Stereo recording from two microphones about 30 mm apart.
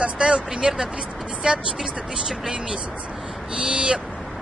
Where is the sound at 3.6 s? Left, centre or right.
Right.